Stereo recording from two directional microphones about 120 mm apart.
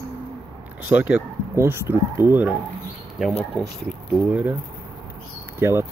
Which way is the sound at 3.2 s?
Centre (ahead or behind).